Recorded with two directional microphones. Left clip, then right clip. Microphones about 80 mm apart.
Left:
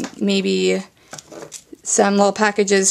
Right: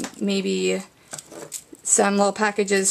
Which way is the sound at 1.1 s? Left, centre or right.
Centre.